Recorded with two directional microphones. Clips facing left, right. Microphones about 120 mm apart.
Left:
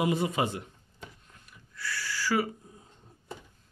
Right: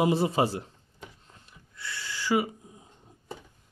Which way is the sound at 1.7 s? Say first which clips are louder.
Left 2 dB; 20° right (ahead or behind).